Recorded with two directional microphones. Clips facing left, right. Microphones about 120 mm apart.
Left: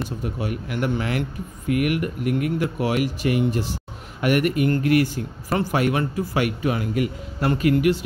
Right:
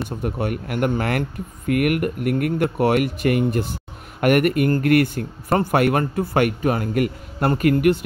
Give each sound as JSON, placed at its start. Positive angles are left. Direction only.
{"t": 0.2, "sound": "a man's voice", "side_deg": -55}